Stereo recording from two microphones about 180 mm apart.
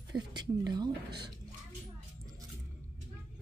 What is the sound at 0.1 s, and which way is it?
Speech, 25° right (ahead or behind).